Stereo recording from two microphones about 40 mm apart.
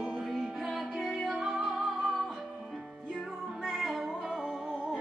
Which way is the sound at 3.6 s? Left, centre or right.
Centre.